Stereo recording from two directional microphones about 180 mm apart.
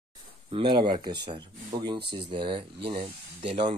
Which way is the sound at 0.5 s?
25° right (ahead or behind).